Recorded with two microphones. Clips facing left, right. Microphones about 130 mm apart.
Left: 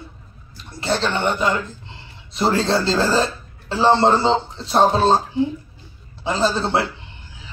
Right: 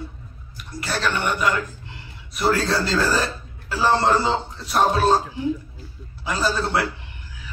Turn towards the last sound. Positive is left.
turn(degrees=25)  # may be behind; listen again after turning